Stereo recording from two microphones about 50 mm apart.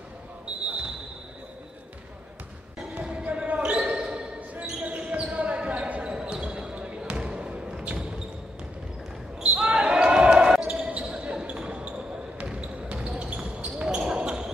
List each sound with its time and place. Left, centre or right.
2.9 s basketball bounce: right
9.4 s basketball bounce: right